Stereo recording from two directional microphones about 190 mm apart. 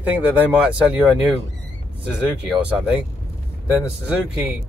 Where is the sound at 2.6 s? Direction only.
5° right (ahead or behind).